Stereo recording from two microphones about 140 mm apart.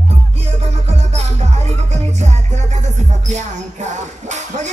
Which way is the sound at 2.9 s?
55° right (ahead or behind).